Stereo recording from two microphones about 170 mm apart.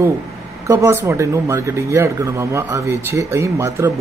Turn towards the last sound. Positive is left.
turn(degrees=-15)  # may be behind; listen again after turning